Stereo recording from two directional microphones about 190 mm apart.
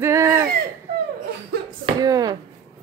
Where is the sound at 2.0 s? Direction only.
20° right (ahead or behind).